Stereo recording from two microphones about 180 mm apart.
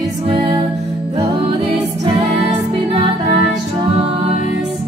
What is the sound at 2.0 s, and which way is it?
Music, 35° right (ahead or behind).